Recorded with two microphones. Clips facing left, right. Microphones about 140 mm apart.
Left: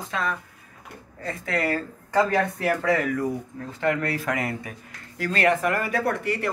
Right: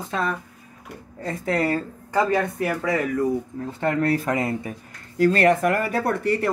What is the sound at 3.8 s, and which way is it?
Speech, 35° right (ahead or behind).